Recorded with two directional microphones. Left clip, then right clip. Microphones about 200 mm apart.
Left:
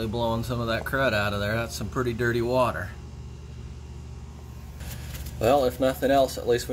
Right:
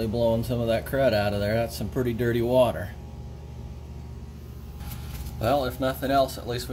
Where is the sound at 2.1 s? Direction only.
25° left (ahead or behind).